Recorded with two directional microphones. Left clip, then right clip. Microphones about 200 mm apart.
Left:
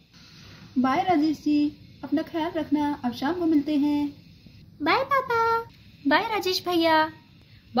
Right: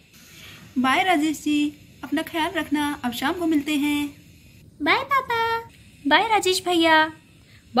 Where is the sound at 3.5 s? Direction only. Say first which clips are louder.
Right 1 dB; 20° left (ahead or behind).